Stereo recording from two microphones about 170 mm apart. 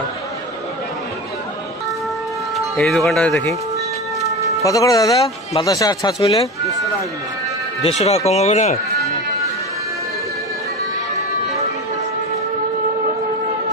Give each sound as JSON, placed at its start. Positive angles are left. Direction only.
{"t": 2.5, "sound": "speech", "side_deg": 0}
{"t": 4.6, "sound": "speech", "side_deg": 20}
{"t": 6.2, "sound": "speech", "side_deg": 35}
{"t": 7.8, "sound": "speech", "side_deg": 40}